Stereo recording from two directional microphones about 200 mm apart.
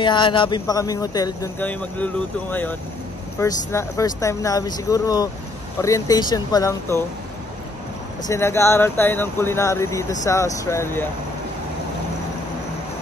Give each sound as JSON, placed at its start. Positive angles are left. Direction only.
{"t": 0.0, "sound": "speech", "side_deg": 25}
{"t": 3.3, "sound": "speech", "side_deg": 15}
{"t": 8.3, "sound": "speech", "side_deg": 15}